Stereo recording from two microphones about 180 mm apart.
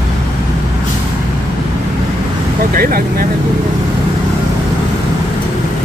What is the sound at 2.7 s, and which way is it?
Speech, 55° right (ahead or behind).